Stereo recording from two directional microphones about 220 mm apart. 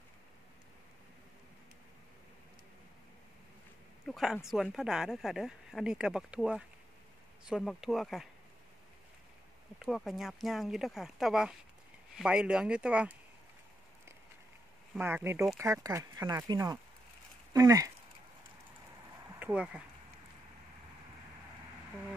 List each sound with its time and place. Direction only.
4.1 s speech: centre (ahead or behind)
9.8 s speech: centre (ahead or behind)
15.0 s speech: 10° right (ahead or behind)
19.4 s speech: 5° right (ahead or behind)